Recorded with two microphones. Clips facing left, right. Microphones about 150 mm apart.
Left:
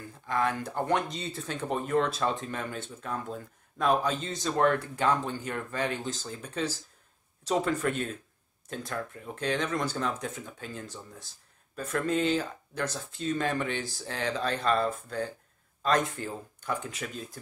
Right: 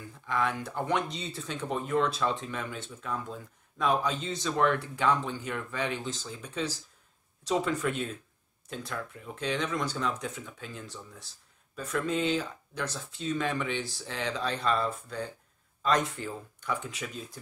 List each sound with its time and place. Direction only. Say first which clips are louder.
0.3 s speech: left 1 dB; 45° left (ahead or behind)